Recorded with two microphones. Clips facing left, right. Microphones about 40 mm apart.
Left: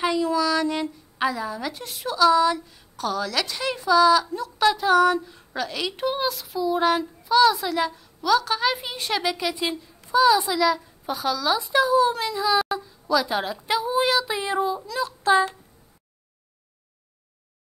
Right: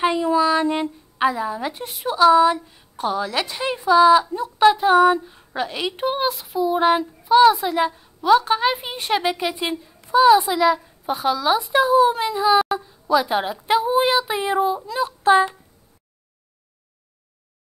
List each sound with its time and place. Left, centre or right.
0.0 s a woman's voice: right